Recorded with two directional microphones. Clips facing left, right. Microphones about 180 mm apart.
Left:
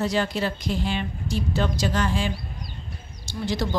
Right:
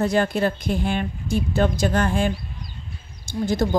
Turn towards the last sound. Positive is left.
turn(degrees=-50)  # may be behind; listen again after turning